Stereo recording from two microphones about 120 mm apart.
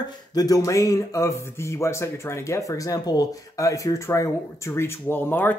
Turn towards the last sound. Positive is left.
turn(degrees=15)  # may be behind; listen again after turning